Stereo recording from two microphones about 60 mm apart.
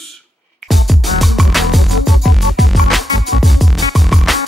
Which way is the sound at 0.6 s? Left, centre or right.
Centre.